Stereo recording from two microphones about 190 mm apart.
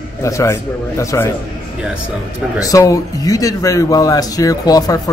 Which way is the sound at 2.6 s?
15° left (ahead or behind).